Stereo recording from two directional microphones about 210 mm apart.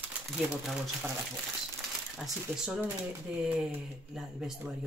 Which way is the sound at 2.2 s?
5° right (ahead or behind).